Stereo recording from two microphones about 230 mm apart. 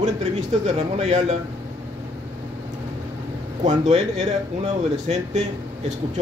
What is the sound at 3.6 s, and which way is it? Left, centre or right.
Speech, right.